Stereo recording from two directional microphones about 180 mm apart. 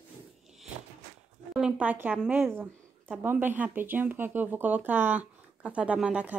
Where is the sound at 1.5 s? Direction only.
5° right (ahead or behind).